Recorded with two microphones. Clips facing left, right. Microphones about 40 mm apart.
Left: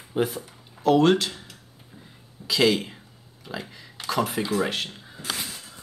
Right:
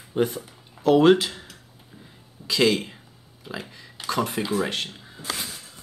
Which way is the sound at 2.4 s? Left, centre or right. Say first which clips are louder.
Even; centre.